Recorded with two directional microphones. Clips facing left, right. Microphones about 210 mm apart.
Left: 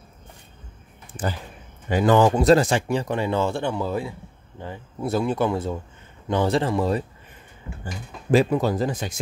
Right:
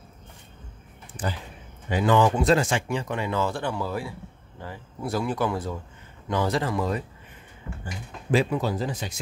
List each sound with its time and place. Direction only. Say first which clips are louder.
1.9 s speech: left 3 dB; 40° left (ahead or behind)
7.8 s speech: left 2 dB; 40° left (ahead or behind)